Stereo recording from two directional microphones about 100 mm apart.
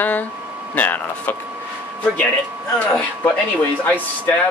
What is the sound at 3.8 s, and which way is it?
Speech, 15° left (ahead or behind).